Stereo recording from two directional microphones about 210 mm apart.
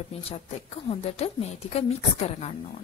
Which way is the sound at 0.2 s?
30° left (ahead or behind).